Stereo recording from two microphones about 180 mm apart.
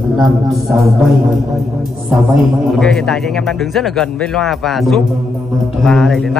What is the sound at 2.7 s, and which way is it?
A man's voice, centre (ahead or behind).